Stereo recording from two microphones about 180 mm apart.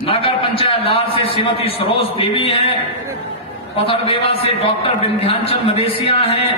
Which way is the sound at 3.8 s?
30° left (ahead or behind).